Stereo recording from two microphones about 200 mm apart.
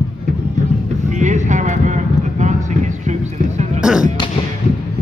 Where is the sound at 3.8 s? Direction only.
5° right (ahead or behind).